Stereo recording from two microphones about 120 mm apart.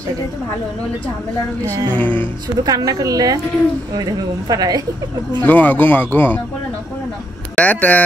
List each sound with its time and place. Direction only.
1.9 s speech: 15° left (ahead or behind)
2.1 s speech: 35° right (ahead or behind)
5.4 s speech: 15° left (ahead or behind)
7.5 s speech: 15° left (ahead or behind)